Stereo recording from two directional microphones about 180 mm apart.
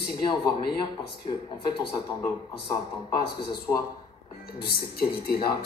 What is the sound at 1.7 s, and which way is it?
Speech, 25° left (ahead or behind).